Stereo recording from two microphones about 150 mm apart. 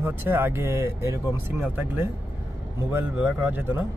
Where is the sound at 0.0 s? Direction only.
15° right (ahead or behind).